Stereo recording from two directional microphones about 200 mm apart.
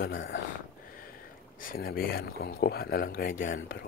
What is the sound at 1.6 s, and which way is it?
Speech, 45° left (ahead or behind).